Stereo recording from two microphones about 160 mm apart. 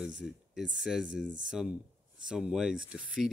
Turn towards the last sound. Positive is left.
turn(degrees=-5)  # may be behind; listen again after turning